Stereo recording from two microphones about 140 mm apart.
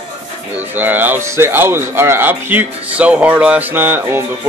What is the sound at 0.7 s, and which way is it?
Speech, 15° right (ahead or behind).